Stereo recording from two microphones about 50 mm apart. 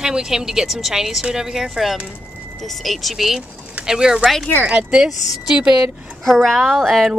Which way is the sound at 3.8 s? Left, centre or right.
Centre.